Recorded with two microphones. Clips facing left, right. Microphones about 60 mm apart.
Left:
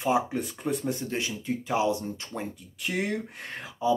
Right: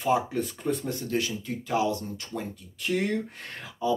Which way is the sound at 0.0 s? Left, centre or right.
Centre.